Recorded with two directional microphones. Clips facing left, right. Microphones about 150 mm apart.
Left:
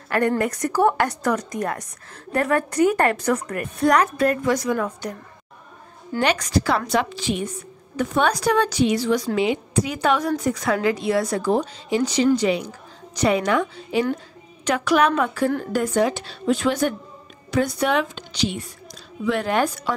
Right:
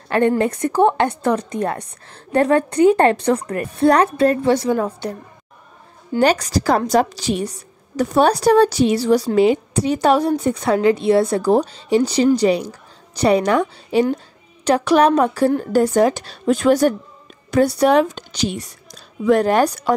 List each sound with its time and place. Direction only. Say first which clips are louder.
0.4 s a woman's voice: right 4 dB; 25° right (ahead or behind)
6.2 s a woman's voice: right 5 dB; 35° right (ahead or behind)